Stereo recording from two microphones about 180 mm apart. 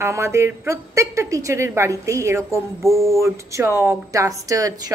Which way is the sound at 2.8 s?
Centre (ahead or behind).